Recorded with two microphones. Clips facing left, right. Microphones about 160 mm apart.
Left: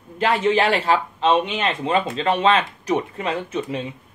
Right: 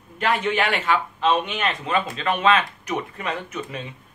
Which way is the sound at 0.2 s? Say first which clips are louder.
Left 4 dB; 30° left (ahead or behind).